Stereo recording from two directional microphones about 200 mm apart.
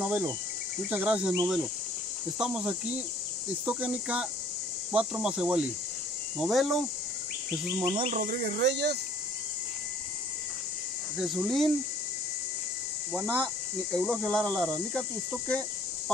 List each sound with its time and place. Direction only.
0.8 s insect: 5° right (ahead or behind)
2.3 s speech: 5° right (ahead or behind)
7.8 s insect: 20° right (ahead or behind)
8.1 s speech: 50° right (ahead or behind)
11.1 s speech: centre (ahead or behind)
13.1 s speech: 5° left (ahead or behind)